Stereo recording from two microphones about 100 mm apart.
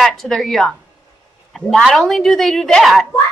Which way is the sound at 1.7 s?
Centre (ahead or behind).